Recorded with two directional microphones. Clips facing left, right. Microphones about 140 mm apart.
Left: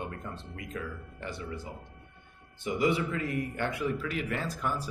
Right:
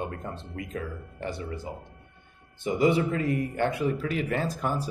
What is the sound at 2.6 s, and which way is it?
A man's voice, 30° right (ahead or behind).